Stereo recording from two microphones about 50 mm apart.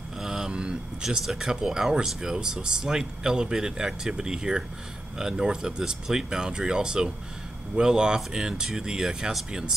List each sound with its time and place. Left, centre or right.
0.2 s vehicle: centre
1.0 s speech: centre